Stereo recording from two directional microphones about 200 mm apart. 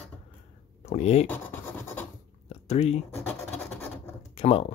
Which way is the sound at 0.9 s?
35° left (ahead or behind).